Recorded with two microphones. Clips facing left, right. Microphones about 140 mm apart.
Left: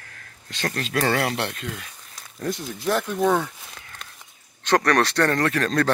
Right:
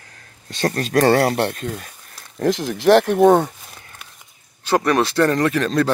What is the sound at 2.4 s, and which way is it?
Speech, 90° right.